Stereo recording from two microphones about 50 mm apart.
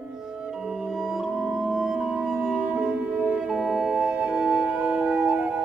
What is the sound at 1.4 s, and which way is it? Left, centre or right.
Music, centre.